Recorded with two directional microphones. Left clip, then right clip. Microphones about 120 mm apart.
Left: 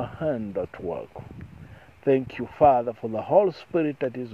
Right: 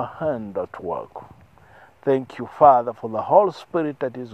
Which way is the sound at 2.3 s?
35° left (ahead or behind).